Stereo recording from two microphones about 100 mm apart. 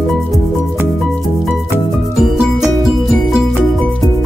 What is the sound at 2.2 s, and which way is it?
Music, centre (ahead or behind).